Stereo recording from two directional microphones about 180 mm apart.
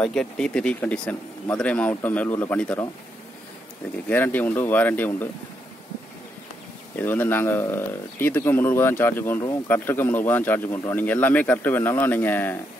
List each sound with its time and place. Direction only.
0.0 s speech: 5° left (ahead or behind)
4.1 s speech: 10° left (ahead or behind)
7.0 s speech: 10° left (ahead or behind)